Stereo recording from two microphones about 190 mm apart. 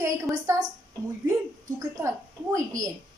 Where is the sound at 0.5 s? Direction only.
15° right (ahead or behind).